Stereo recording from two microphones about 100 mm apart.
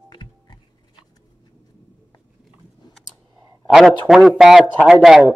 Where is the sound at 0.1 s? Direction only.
50° left (ahead or behind).